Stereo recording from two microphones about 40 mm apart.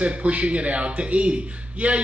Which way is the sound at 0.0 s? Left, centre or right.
Right.